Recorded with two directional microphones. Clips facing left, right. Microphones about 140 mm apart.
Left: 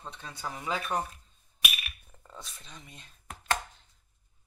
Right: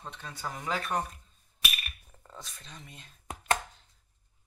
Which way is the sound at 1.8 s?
Centre (ahead or behind).